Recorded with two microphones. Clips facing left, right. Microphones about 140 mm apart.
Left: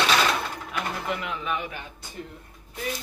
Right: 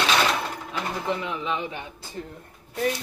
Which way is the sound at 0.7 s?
20° right (ahead or behind).